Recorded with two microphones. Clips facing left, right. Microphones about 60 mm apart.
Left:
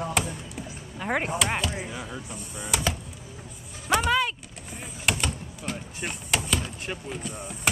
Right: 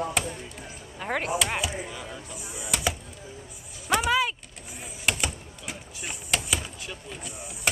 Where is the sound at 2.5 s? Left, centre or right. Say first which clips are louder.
Left 1 dB; centre.